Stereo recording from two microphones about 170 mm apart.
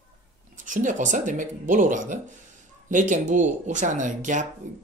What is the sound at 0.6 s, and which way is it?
Speech, 50° right (ahead or behind).